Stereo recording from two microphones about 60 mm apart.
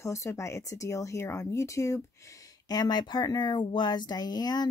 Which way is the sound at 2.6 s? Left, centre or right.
Left.